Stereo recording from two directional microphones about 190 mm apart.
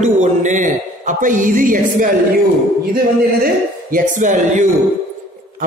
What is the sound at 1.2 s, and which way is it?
Music, 45° right (ahead or behind).